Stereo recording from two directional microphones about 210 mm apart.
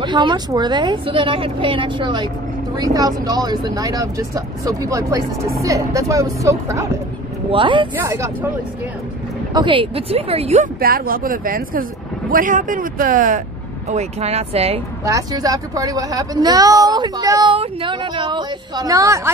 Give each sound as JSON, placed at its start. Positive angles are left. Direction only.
{"t": 0.0, "sound": "a woman's voice", "side_deg": -20}
{"t": 9.5, "sound": "a woman's voice", "side_deg": -20}
{"t": 10.8, "sound": "a woman's voice", "side_deg": -45}
{"t": 15.0, "sound": "speech", "side_deg": -15}